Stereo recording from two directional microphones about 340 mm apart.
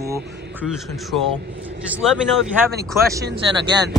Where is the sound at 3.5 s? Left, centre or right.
Centre.